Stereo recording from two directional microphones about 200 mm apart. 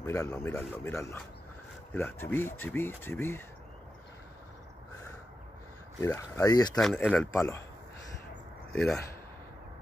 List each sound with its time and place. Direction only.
0.0 s speech: 15° left (ahead or behind)
5.9 s speech: 15° left (ahead or behind)
6.7 s speech: 5° left (ahead or behind)